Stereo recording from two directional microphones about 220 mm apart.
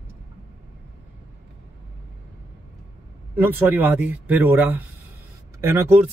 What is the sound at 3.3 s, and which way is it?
Speech, 10° right (ahead or behind).